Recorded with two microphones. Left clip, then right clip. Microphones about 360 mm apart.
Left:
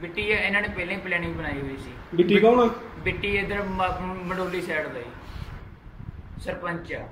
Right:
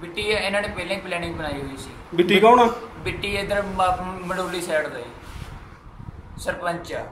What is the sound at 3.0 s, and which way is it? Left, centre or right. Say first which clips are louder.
Speech: left 4 dB; centre.